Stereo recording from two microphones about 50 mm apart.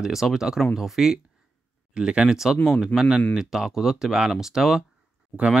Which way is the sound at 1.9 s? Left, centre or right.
Centre.